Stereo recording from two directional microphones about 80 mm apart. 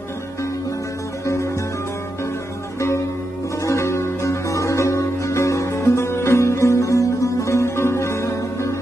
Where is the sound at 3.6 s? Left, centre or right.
Left.